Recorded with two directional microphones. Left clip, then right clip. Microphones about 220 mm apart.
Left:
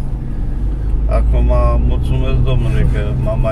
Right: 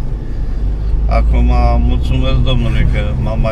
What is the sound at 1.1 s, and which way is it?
Vehicle, 20° right (ahead or behind).